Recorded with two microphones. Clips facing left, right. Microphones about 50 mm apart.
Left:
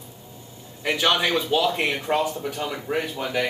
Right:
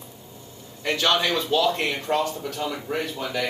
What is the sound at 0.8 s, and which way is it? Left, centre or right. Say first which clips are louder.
Speech: left 1 dB; centre.